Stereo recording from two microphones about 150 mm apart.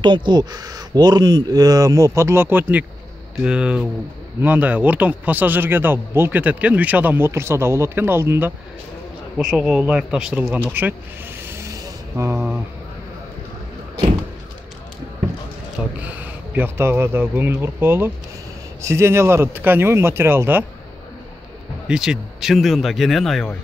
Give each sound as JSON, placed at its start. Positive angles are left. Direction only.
{"t": 0.0, "sound": "speech", "side_deg": -30}
{"t": 9.4, "sound": "speech", "side_deg": -5}
{"t": 11.4, "sound": "a sound", "side_deg": -20}
{"t": 16.1, "sound": "speech", "side_deg": -10}
{"t": 21.8, "sound": "speech", "side_deg": -5}